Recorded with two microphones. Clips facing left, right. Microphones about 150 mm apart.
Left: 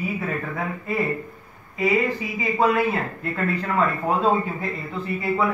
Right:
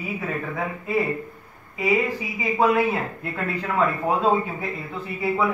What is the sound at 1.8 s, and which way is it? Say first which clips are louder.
Speech: left 1 dB; 10° right (ahead or behind).